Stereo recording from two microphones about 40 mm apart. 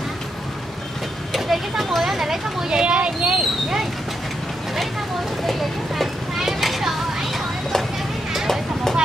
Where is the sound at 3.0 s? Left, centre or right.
Right.